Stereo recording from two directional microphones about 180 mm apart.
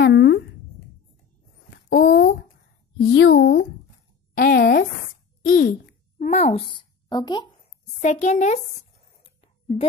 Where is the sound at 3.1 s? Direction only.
85° left; by 5.7 s 55° left (ahead or behind).